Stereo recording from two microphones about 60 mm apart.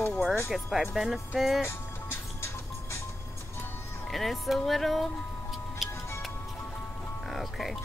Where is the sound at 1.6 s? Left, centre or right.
Left.